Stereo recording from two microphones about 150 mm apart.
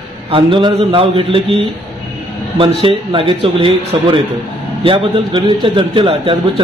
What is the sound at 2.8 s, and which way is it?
A man's voice, 35° right (ahead or behind).